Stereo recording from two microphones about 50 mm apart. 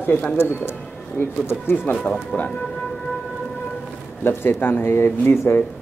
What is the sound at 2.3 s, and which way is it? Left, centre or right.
Speech, left.